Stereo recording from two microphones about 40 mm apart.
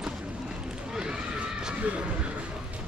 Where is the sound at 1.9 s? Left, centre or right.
Right.